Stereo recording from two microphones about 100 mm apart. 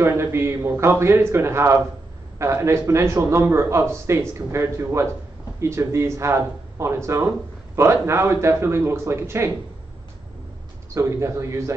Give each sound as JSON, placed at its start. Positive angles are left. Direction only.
{"t": 0.0, "sound": "a man's voice", "side_deg": -25}
{"t": 11.0, "sound": "a man's voice", "side_deg": -30}